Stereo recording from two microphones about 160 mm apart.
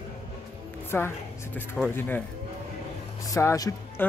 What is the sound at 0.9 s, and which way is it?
Speech, 10° left (ahead or behind).